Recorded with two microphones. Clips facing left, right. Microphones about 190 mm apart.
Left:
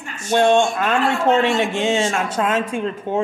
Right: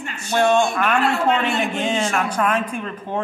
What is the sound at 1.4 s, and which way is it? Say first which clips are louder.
Speech: left 3 dB; 90° left.